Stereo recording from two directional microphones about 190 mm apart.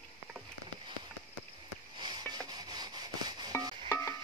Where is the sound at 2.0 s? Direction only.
20° right (ahead or behind).